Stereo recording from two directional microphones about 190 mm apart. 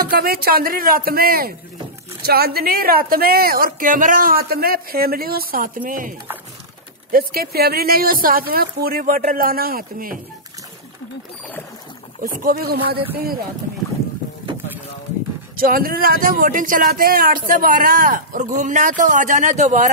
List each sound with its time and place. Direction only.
0.0 s speech: 50° right (ahead or behind)
12.2 s speech: 45° right (ahead or behind)
15.5 s speech: 50° right (ahead or behind)